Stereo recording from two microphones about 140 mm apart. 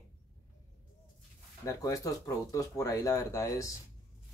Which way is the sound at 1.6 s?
20° left (ahead or behind).